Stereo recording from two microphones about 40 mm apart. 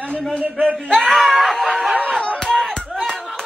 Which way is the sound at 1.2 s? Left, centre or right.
Centre.